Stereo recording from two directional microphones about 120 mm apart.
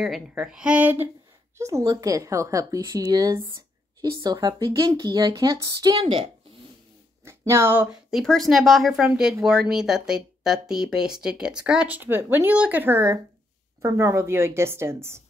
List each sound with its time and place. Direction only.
0.3 s speech: 10° right (ahead or behind)
1.6 s speech: 25° right (ahead or behind)
5.9 s a woman's voice: 50° right (ahead or behind)
7.2 s speech: 20° right (ahead or behind)
7.9 s a woman's voice: centre (ahead or behind); by 15.2 s 20° right (ahead or behind)